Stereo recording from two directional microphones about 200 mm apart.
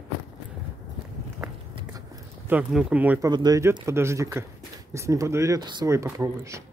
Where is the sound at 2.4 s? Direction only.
5° right (ahead or behind).